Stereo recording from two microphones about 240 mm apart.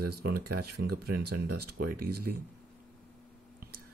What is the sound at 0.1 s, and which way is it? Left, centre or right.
Speech, right.